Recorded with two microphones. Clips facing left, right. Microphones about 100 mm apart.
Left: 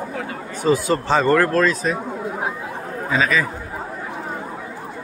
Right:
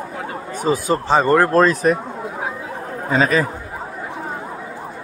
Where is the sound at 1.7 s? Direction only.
60° right (ahead or behind).